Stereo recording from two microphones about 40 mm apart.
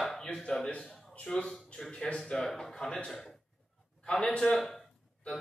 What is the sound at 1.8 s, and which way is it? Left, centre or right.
Speech, centre.